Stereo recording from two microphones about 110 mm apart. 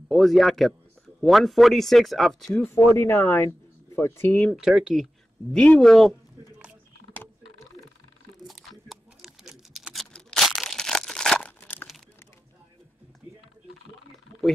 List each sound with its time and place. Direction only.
0.1 s speech: centre (ahead or behind)
2.9 s speech: 20° left (ahead or behind)
4.6 s speech: 5° right (ahead or behind)
5.5 s speech: 10° left (ahead or behind)
8.5 s a sound: centre (ahead or behind)
11.4 s crumpling: 15° left (ahead or behind)